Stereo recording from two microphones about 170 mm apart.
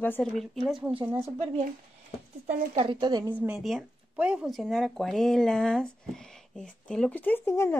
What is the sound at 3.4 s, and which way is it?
Speech, centre (ahead or behind).